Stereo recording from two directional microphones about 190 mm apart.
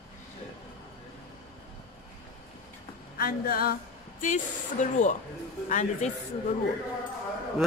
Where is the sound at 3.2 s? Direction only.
50° left (ahead or behind).